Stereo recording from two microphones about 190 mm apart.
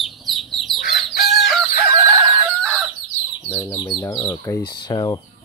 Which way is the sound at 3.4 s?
10° left (ahead or behind).